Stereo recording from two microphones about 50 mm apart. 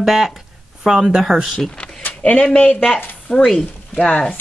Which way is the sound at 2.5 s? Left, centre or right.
Left.